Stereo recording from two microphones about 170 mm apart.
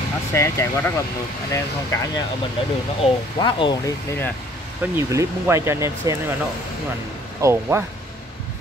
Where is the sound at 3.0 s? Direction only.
35° left (ahead or behind); by 4.3 s 15° left (ahead or behind).